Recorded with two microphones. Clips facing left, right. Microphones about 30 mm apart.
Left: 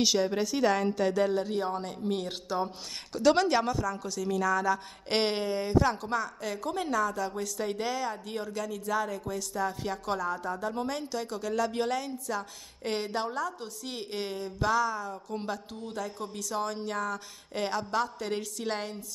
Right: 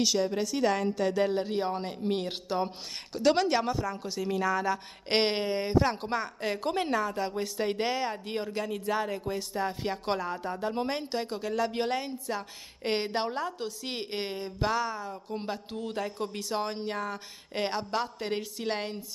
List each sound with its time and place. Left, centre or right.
0.0 s a woman's voice: centre
0.4 s a woman's voice: centre
1.3 s a woman's voice: right
3.2 s a woman's voice: centre; by 7.0 s right
7.0 s a woman's voice: right
14.1 s a woman's voice: right
15.7 s a man's voice: right
16.0 s a woman's voice: right